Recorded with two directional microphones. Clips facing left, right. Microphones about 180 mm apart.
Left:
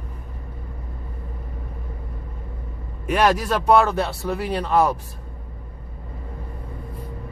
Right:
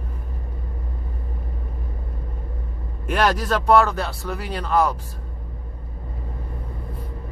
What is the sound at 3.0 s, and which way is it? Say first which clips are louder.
Speech: left 2 dB; 5° left (ahead or behind).